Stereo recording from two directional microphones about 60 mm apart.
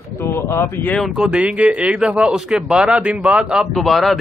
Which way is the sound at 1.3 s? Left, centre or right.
Centre.